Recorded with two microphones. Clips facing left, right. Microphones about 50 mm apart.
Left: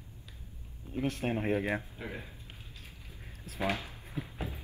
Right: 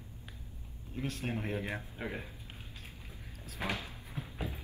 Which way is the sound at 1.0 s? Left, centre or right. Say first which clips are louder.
Left 5 dB; left.